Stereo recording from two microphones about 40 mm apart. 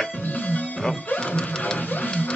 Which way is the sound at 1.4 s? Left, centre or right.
Left.